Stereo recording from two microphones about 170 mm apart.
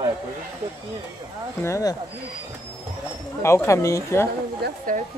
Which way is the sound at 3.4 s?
15° left (ahead or behind).